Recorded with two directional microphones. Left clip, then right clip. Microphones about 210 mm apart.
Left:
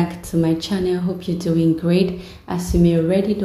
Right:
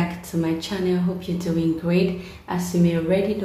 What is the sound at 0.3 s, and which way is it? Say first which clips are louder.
A woman's voice: left 6 dB; 30° left (ahead or behind).